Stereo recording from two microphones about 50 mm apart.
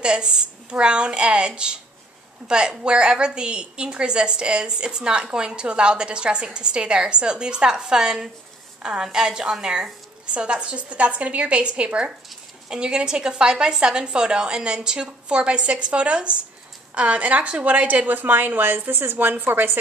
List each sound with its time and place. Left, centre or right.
0.0 s a woman's voice: centre; by 19.8 s right